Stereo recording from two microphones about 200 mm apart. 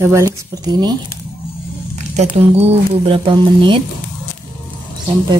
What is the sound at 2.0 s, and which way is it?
Speech, 35° right (ahead or behind).